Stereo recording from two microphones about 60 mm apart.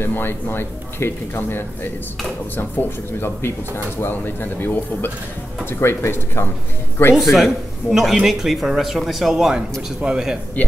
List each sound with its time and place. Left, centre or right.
0.0 s speech: left
7.2 s speech: centre